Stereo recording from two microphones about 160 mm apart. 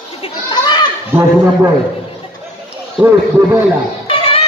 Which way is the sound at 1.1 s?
15° right (ahead or behind).